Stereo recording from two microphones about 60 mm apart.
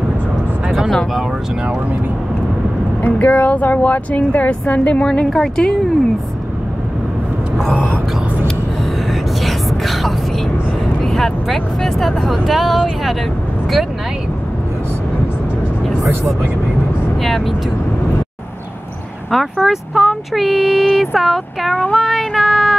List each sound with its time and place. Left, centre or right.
0.7 s speech: centre
3.0 s speech: left
5.2 s speech: centre
9.4 s whispering: centre
11.0 s speech: centre
17.2 s speech: centre
19.3 s speech: centre
21.9 s child singing: centre